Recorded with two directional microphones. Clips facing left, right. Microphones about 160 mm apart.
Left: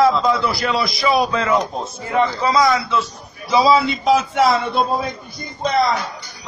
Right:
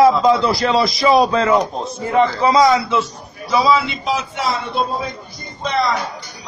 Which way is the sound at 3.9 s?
45° left (ahead or behind).